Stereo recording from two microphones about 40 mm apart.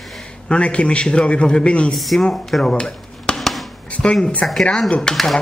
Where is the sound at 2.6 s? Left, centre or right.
Centre.